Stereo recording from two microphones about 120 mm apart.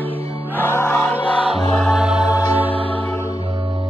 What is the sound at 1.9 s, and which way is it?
Music, 5° right (ahead or behind).